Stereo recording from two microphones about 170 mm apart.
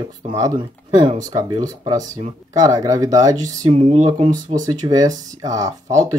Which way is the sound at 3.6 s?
35° right (ahead or behind).